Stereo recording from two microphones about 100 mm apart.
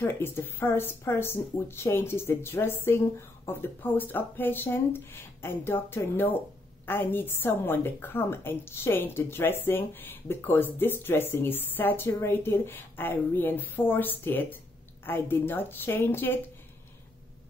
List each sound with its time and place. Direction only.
0.0 s a woman's voice: 20° left (ahead or behind)